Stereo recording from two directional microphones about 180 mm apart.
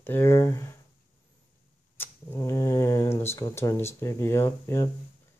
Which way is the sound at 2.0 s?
15° left (ahead or behind).